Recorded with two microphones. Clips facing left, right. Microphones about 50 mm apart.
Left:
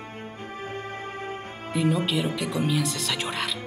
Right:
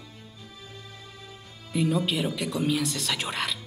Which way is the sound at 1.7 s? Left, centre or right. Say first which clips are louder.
Left 1 dB; centre.